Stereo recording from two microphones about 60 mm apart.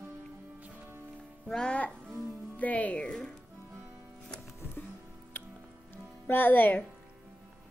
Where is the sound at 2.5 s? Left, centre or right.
Left.